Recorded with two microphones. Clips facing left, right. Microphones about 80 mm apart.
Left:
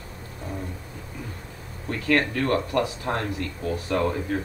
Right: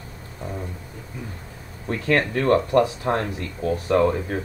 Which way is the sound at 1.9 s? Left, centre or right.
Right.